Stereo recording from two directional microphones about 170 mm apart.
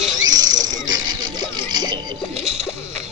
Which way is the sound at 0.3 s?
25° right (ahead or behind).